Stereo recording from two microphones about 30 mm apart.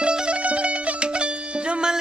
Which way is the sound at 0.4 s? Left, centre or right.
Right.